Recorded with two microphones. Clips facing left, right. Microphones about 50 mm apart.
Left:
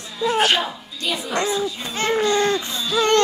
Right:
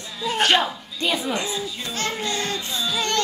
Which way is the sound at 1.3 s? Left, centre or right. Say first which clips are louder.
Left 5 dB; left.